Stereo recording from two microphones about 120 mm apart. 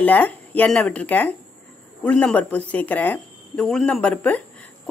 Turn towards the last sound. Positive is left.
turn(degrees=10)  # may be behind; listen again after turning